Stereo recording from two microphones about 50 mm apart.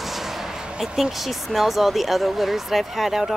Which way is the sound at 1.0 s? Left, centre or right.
Centre.